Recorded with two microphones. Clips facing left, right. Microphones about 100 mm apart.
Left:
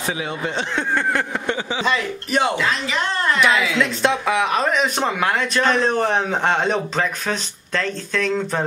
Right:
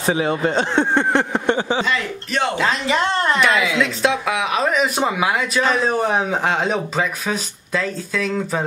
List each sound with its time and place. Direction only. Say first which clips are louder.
0.0 s speech: right 6 dB; 40° right (ahead or behind)
0.7 s a sound: right 2 dB; 30° right (ahead or behind)
1.9 s speech: left 1 dB; 15° left (ahead or behind)
2.5 s speech: right 3 dB; 35° right (ahead or behind)
3.3 s speech: right 1 dB; centre (ahead or behind)